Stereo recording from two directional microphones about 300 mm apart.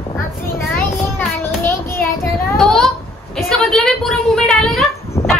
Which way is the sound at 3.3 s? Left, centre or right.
Centre.